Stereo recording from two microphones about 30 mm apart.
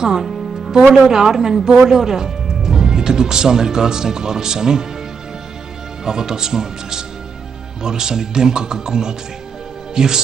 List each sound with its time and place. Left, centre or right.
1.0 s speech: centre
6.0 s speech: centre